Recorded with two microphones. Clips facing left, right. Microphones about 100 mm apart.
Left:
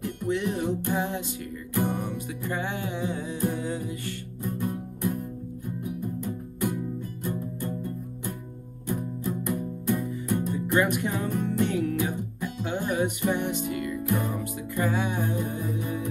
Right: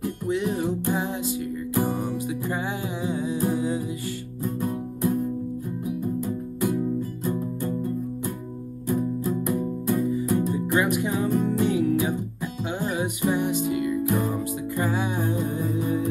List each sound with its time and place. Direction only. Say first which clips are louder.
0.0 s music: right 2 dB; 15° right (ahead or behind)
4.6 s music: right 4 dB; 55° right (ahead or behind)
6.0 s music: right 5 dB; 15° right (ahead or behind)
9.5 s music: right 1 dB; 15° right (ahead or behind)